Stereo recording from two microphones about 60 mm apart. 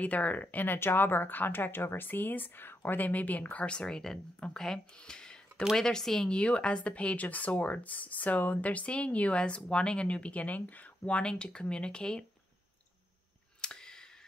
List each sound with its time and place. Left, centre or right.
0.0 s speech: left
0.7 s speech: left; by 6.3 s centre
6.3 s speech: centre
13.6 s clicking: centre